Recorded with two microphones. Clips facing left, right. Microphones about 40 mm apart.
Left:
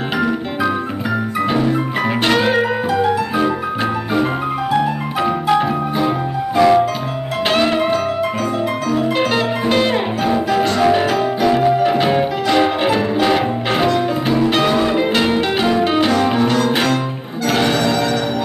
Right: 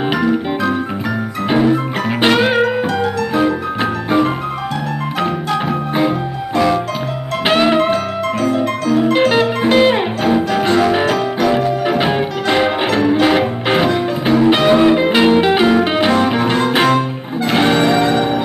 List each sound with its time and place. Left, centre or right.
2.2 s music: centre
6.5 s music: centre
7.4 s music: centre
9.3 s music: centre
12.0 s music: centre
12.8 s music: centre; by 18.2 s right